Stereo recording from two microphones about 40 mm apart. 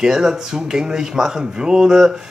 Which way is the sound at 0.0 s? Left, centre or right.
Centre.